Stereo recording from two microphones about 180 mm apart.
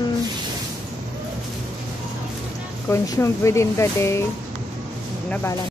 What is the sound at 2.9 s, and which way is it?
Speech, 15° left (ahead or behind).